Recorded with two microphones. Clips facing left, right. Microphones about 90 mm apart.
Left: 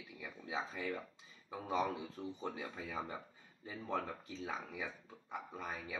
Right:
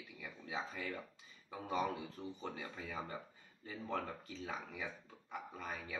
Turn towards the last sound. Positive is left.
turn(degrees=10)  # may be behind; listen again after turning